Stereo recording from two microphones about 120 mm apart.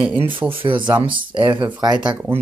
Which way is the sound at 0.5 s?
45° right (ahead or behind).